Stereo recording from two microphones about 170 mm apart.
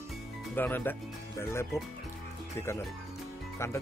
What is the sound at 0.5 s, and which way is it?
Speech, 10° left (ahead or behind).